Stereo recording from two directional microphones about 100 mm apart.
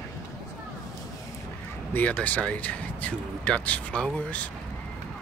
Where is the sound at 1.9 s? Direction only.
15° left (ahead or behind).